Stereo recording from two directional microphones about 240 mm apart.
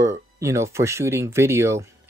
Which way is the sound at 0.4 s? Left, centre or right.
Centre.